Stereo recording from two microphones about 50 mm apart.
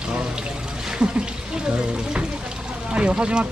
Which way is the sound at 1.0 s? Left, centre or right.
Centre.